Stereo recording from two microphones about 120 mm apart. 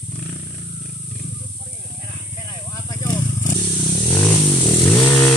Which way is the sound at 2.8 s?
35° left (ahead or behind).